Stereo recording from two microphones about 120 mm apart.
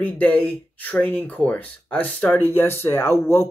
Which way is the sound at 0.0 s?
15° left (ahead or behind).